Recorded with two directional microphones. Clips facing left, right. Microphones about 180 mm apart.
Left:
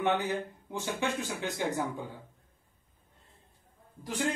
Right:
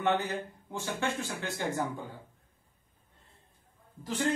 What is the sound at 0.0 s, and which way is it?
Speech, 15° left (ahead or behind).